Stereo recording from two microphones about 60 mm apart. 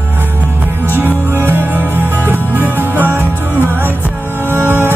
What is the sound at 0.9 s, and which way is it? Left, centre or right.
Music, right.